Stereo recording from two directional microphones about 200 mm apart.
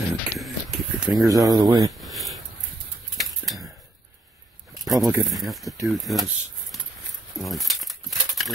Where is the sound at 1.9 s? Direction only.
Centre (ahead or behind).